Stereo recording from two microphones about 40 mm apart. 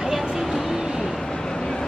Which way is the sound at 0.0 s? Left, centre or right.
Centre.